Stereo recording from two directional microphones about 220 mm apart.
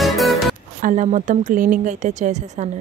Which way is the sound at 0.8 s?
35° right (ahead or behind).